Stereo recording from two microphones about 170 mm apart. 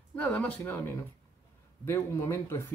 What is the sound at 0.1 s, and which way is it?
Speech, 5° left (ahead or behind).